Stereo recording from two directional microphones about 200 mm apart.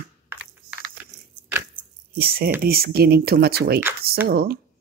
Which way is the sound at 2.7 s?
50° right (ahead or behind).